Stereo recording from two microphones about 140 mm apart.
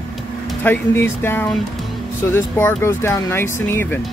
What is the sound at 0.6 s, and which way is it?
Speech, 15° left (ahead or behind).